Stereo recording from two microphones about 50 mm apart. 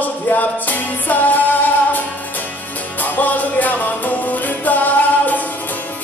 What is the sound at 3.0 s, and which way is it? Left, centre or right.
Music, left.